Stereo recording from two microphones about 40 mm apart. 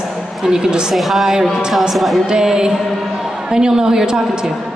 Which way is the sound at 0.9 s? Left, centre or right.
Centre.